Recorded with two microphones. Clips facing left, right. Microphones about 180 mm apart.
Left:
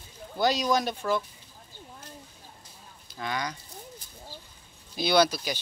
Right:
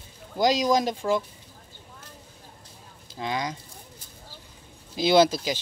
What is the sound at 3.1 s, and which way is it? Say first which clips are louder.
Speech: right 3 dB; 25° right (ahead or behind).